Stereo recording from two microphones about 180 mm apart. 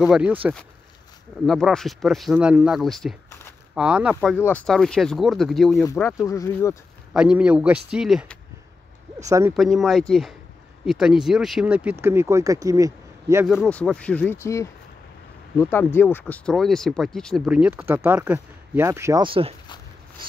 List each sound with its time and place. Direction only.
0.0 s speech: 5° right (ahead or behind)
1.4 s speech: centre (ahead or behind)
4.4 s speech: 10° left (ahead or behind)
5.9 s speech: 15° left (ahead or behind)
7.2 s speech: 5° right (ahead or behind)
9.5 s speech: centre (ahead or behind); by 13.5 s 15° right (ahead or behind)
13.5 s speech: 5° left (ahead or behind); by 19.2 s 15° right (ahead or behind)
19.2 s speech: 30° right (ahead or behind)